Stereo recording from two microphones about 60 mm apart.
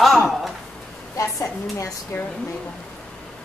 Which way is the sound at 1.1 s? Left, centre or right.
Left.